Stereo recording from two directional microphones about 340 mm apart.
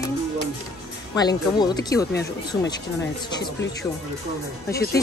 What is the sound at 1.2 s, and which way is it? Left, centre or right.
Speech, centre.